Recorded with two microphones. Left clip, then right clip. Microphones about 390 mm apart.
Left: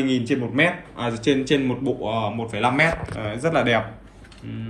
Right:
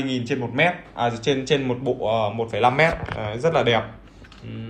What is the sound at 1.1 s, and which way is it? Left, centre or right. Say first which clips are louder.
Speech: left 5 dB; centre.